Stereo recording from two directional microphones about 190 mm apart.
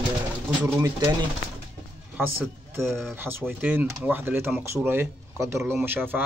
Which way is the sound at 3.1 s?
10° right (ahead or behind).